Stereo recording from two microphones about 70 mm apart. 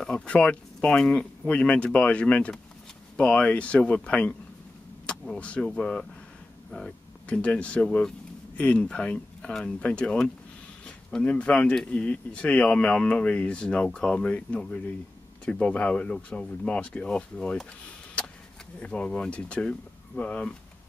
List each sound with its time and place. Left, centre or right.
0.0 s speech: centre
5.4 s speech: centre
7.2 s speech: centre
18.8 s speech: centre